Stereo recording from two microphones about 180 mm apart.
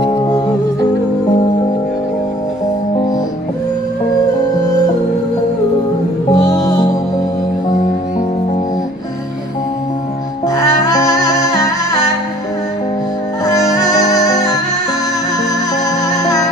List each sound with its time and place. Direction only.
0.0 s music: 25° left (ahead or behind)
6.3 s music: 20° left (ahead or behind)
10.5 s music: 20° left (ahead or behind)
13.7 s music: 20° left (ahead or behind)
16.2 s music: 20° left (ahead or behind)